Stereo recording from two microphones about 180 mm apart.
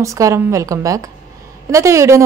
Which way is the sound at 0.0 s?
15° right (ahead or behind).